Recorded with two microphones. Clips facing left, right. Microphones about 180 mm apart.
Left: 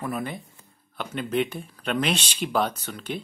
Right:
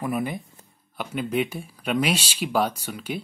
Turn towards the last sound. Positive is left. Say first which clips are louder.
# right 1 dB
turn(degrees=-10)  # may be behind; listen again after turning